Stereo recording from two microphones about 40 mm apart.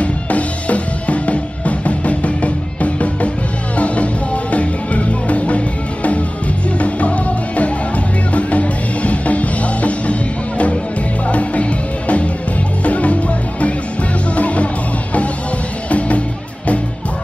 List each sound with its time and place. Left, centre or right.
0.0 s drum kit: left
3.7 s music: left
6.8 s music: left
11.2 s music: left